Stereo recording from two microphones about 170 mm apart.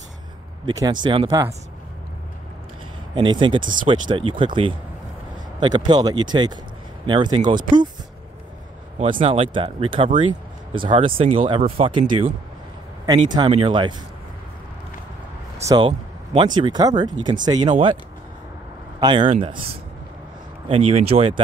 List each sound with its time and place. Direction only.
0.7 s speech: 25° right (ahead or behind)
3.2 s speech: 30° right (ahead or behind)
9.2 s speech: 35° right (ahead or behind)
16.3 s speech: 25° right (ahead or behind)
18.9 s speech: 25° right (ahead or behind)
20.6 s speech: 35° right (ahead or behind)